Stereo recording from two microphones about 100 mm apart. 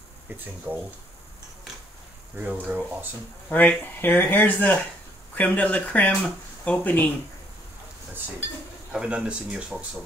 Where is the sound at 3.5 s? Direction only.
15° left (ahead or behind).